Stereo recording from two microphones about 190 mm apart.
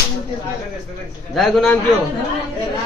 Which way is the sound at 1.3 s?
5° left (ahead or behind).